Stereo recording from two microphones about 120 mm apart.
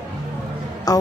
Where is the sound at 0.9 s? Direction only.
30° left (ahead or behind).